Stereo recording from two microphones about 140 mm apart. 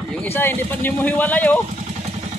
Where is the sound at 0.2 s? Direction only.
15° left (ahead or behind).